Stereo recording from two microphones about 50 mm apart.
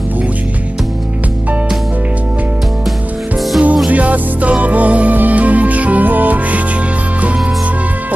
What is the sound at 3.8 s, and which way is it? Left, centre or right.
Music, right.